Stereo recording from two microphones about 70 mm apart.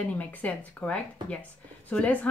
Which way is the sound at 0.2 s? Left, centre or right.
Centre.